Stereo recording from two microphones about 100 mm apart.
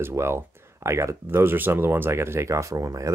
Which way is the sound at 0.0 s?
25° right (ahead or behind).